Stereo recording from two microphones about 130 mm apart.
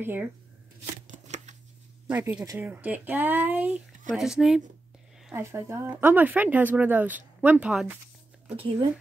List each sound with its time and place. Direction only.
0.0 s speech: 15° right (ahead or behind)
1.1 s shuffling cards: 65° right (ahead or behind)
2.0 s speech: 10° right (ahead or behind)
5.3 s speech: 20° right (ahead or behind)